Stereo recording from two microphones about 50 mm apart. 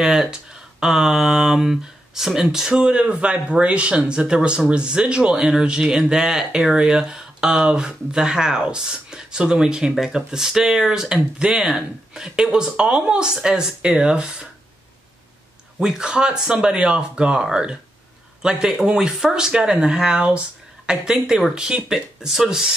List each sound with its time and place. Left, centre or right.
0.0 s speech: centre
15.8 s speech: centre